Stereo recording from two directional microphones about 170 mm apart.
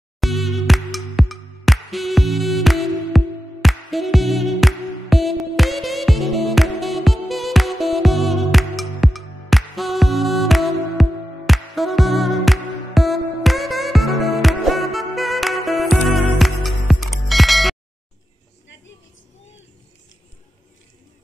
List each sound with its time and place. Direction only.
0.2 s music: centre (ahead or behind)